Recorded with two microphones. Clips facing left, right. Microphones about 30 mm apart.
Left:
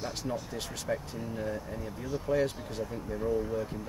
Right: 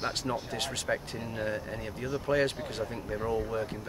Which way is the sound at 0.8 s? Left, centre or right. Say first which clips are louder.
Right 1 dB; right.